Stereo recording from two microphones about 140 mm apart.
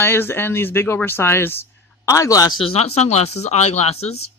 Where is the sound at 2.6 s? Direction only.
45° left (ahead or behind).